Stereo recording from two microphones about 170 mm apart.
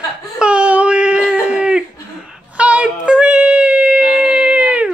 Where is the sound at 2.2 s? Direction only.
5° right (ahead or behind).